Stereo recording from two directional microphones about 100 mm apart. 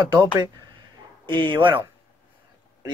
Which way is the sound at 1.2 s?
55° right (ahead or behind).